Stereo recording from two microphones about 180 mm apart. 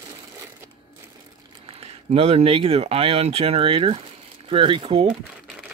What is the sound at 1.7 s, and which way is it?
Speech, 35° right (ahead or behind).